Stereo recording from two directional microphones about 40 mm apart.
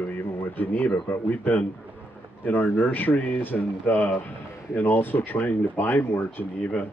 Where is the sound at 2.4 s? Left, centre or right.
Left.